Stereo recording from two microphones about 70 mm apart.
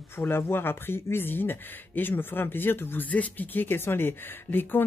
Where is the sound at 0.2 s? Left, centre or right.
Left.